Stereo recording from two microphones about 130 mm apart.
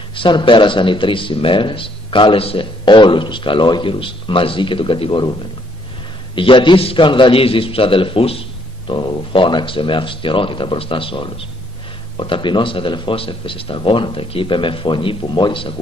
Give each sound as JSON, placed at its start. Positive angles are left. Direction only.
{"t": 0.1, "sound": "speech", "side_deg": 40}
{"t": 6.3, "sound": "speech", "side_deg": 40}